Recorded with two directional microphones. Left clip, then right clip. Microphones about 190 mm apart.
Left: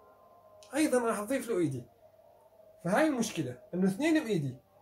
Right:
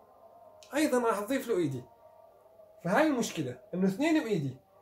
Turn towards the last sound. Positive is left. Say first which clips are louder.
# right 1 dB
turn(degrees=-5)  # may be behind; listen again after turning